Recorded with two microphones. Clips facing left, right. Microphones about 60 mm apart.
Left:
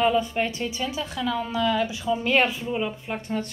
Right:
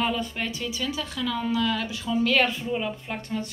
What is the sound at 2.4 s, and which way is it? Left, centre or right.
Speech, centre.